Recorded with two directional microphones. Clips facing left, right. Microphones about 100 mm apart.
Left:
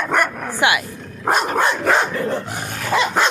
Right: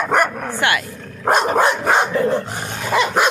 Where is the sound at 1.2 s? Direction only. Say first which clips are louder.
Right 3 dB; centre (ahead or behind).